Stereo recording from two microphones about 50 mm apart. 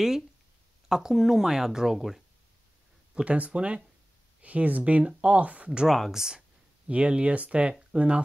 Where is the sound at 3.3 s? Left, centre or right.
Right.